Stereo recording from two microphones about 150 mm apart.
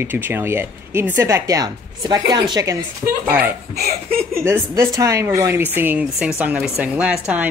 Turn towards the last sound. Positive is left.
turn(degrees=-10)  # may be behind; listen again after turning